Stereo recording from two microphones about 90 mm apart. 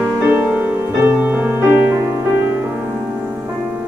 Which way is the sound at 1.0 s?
20° right (ahead or behind).